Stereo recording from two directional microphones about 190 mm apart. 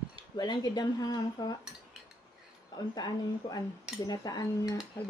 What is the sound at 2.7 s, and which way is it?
Speech, 20° left (ahead or behind).